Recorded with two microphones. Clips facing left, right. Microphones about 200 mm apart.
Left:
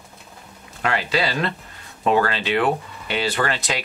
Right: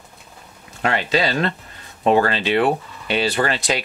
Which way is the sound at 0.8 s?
25° right (ahead or behind).